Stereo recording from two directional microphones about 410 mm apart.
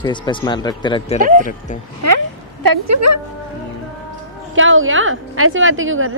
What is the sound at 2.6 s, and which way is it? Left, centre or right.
Speech, right.